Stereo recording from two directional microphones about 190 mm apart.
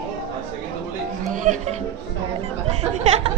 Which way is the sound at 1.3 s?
40° right (ahead or behind).